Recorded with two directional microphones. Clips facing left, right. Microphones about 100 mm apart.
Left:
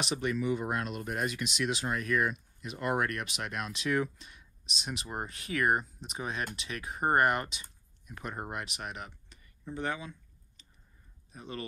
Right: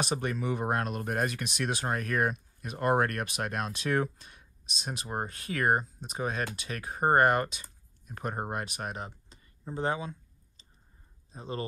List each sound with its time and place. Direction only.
0.0 s speech: 45° right (ahead or behind)
11.3 s speech: 30° right (ahead or behind)